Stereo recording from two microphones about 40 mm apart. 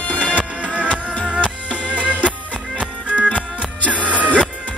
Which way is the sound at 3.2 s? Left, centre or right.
Left.